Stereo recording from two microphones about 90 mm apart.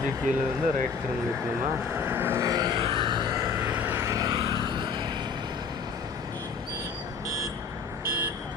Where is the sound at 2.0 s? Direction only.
25° right (ahead or behind).